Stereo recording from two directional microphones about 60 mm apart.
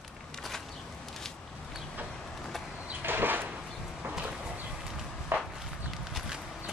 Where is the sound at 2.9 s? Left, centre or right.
Right.